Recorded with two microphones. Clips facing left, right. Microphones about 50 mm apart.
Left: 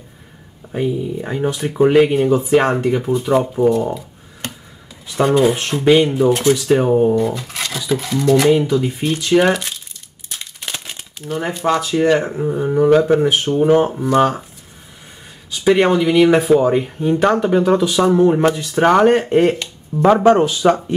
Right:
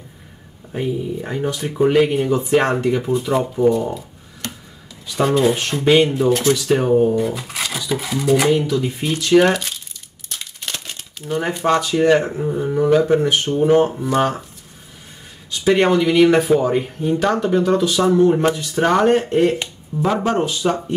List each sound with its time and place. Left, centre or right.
0.7 s speech: centre
5.1 s speech: centre
7.2 s a sound: centre
7.9 s speech: centre
10.3 s crumpling: centre
11.2 s speech: centre
15.6 s speech: centre
20.2 s speech: left